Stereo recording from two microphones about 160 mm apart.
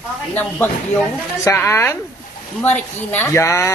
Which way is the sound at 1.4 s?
15° left (ahead or behind).